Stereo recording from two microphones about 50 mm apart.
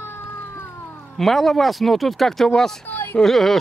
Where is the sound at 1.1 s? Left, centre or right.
Centre.